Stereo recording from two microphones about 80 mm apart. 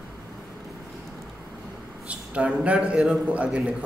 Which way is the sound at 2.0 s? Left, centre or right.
Centre.